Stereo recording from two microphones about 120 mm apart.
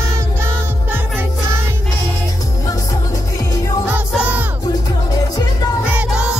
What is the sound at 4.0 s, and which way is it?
Music, 15° right (ahead or behind).